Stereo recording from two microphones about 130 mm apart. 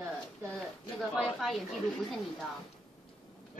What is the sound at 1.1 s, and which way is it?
Speech, 5° right (ahead or behind).